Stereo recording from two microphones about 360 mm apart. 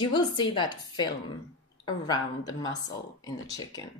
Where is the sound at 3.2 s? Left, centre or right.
Centre.